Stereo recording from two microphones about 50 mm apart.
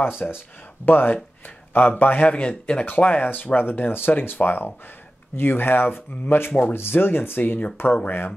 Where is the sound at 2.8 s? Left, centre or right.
Left.